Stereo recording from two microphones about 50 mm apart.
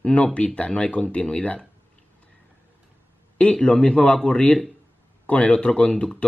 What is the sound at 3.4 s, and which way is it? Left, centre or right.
Speech, left.